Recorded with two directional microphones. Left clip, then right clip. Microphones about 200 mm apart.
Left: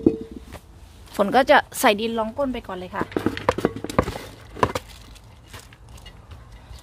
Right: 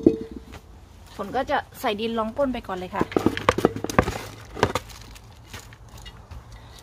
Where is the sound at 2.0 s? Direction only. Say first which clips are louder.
Even; 15° left (ahead or behind); by 3.4 s centre (ahead or behind).